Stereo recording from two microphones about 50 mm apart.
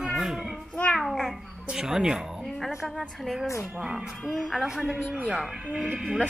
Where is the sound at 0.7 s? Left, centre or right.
Left.